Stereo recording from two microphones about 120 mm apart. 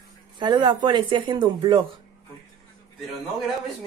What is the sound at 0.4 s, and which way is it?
Speech, 40° right (ahead or behind).